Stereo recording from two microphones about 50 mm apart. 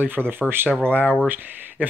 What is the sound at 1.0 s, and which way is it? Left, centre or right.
Speech, left.